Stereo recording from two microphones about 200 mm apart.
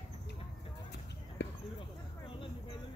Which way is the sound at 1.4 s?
60° left (ahead or behind).